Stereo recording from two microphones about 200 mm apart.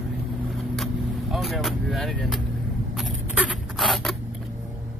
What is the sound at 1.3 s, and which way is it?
Speech, centre (ahead or behind).